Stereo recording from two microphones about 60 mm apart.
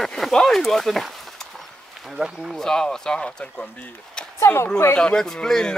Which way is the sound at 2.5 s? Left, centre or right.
Centre.